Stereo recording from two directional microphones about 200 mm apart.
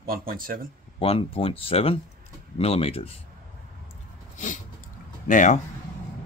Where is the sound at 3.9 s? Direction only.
40° left (ahead or behind).